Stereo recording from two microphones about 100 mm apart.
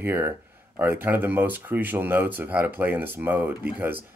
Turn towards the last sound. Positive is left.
turn(degrees=-20)  # may be behind; listen again after turning